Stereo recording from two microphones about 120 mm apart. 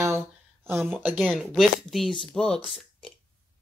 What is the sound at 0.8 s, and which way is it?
Speech, 15° right (ahead or behind).